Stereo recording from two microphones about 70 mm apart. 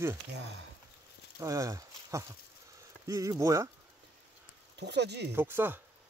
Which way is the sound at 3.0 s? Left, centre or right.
Right.